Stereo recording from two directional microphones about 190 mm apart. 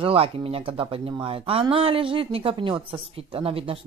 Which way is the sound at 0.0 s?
30° right (ahead or behind).